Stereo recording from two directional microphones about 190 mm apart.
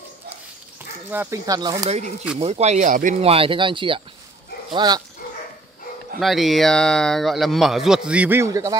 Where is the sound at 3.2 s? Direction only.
30° right (ahead or behind).